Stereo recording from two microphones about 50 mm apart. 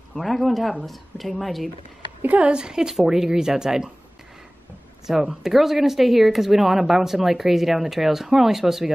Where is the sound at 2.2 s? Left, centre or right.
Right.